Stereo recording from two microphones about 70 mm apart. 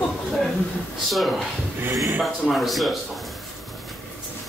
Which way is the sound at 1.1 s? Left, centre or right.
Centre.